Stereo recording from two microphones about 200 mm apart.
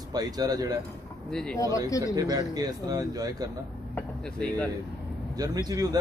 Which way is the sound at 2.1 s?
20° right (ahead or behind).